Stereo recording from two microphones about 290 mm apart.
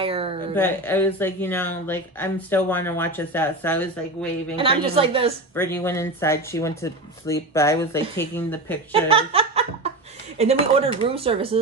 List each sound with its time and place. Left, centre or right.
0.0 s speech: centre
0.6 s speech: centre
4.6 s speech: centre
5.5 s speech: centre
8.9 s speech: centre